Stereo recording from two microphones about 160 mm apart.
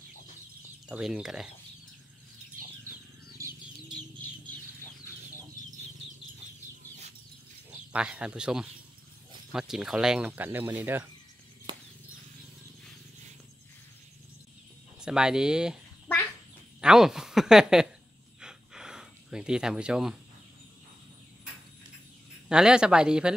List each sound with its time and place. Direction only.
0.8 s speech: 5° right (ahead or behind)
2.9 s bird: 15° right (ahead or behind)
7.9 s speech: 5° right (ahead or behind)
15.0 s speech: 5° right (ahead or behind)
18.4 s a sound: 5° right (ahead or behind)
22.5 s speech: 5° right (ahead or behind)